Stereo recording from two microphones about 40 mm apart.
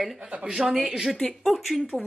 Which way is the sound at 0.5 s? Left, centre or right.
Centre.